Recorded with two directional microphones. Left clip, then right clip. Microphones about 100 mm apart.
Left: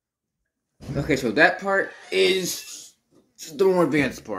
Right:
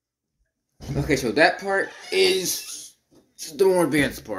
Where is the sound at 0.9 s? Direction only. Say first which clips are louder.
Even; 30° left (ahead or behind).